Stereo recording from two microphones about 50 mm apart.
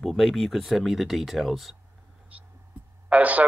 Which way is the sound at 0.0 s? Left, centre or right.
Centre.